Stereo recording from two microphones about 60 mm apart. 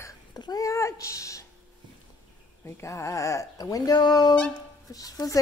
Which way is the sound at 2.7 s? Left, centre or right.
Left.